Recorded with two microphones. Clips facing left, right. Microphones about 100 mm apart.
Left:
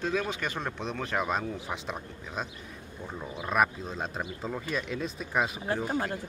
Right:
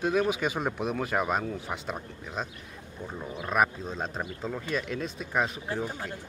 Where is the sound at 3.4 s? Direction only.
5° left (ahead or behind).